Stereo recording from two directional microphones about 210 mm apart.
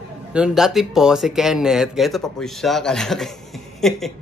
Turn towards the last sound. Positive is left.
turn(degrees=0)  # may be behind; listen again after turning